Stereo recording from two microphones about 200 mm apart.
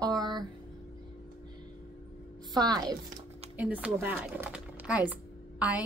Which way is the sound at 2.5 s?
20° right (ahead or behind).